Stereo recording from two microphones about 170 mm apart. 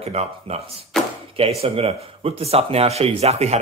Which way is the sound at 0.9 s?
5° left (ahead or behind).